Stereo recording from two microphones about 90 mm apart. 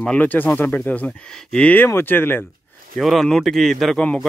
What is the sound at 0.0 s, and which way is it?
Speech, 15° left (ahead or behind).